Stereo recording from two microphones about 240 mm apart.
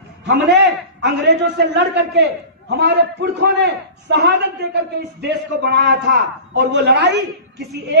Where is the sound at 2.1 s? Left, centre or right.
Right.